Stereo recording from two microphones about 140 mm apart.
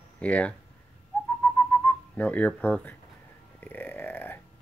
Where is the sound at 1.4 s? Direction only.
10° left (ahead or behind).